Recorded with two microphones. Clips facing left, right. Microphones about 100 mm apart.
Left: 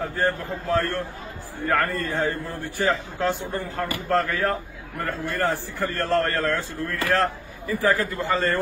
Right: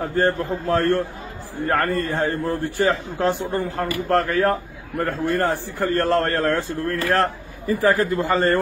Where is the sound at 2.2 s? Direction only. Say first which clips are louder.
Right 4 dB; 50° right (ahead or behind).